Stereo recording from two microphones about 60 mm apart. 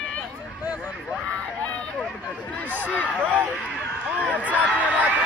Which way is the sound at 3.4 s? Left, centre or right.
Left.